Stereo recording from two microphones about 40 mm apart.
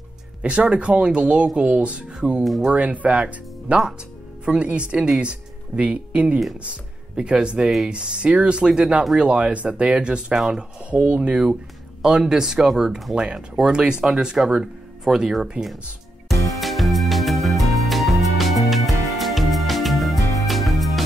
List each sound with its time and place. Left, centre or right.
0.4 s speech: right
2.7 s speech: right
10.3 s speech: centre
10.9 s speech: right
12.0 s speech: centre
13.1 s speech: right
16.3 s music: centre